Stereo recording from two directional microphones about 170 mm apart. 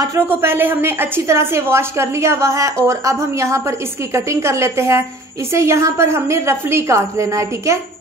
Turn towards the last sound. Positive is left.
turn(degrees=-15)  # may be behind; listen again after turning